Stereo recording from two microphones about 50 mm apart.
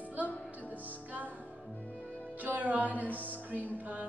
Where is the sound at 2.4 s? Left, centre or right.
Right.